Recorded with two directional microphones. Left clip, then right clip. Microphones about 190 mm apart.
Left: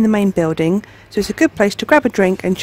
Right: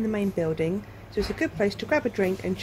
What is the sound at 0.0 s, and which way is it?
Speech, 60° left (ahead or behind).